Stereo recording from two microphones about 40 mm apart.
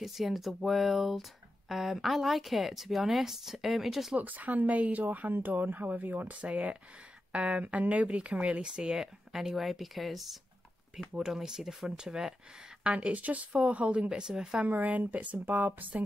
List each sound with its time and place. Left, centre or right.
0.0 s speech: centre
4.2 s a woman's voice: right
6.3 s a woman's voice: right
9.3 s speech: centre; by 13.1 s right
13.1 s a woman's voice: right
14.0 s speech: centre
14.7 s speech: right